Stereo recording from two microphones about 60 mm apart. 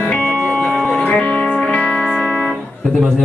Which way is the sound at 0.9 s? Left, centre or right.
Centre.